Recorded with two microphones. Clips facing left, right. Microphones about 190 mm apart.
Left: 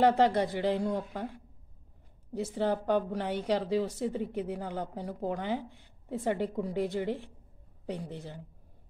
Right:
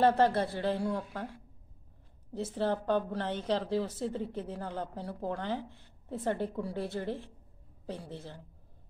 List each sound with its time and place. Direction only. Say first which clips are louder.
0.0 s a woman's voice: left 1 dB; 15° left (ahead or behind)
2.3 s a woman's voice: left 2 dB; 10° left (ahead or behind)